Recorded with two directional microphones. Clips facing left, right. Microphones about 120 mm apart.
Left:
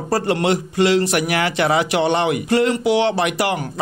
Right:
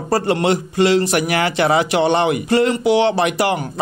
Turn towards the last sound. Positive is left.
turn(degrees=-30)  # may be behind; listen again after turning